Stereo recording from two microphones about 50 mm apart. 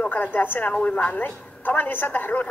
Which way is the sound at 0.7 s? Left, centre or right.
Left.